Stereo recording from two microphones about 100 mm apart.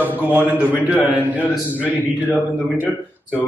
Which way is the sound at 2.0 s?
20° left (ahead or behind).